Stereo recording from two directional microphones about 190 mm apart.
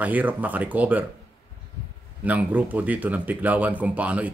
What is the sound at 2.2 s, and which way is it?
Speech, 10° right (ahead or behind).